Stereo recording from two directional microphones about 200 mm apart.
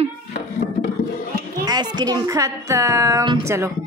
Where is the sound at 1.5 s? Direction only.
20° right (ahead or behind).